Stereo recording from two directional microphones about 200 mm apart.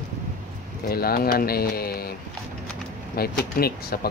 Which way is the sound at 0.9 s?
50° left (ahead or behind).